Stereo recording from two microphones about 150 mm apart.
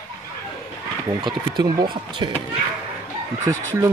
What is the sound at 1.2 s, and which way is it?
Speech, 30° right (ahead or behind).